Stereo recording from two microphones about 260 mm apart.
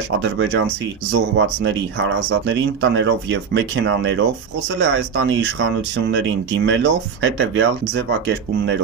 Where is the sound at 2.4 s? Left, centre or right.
Right.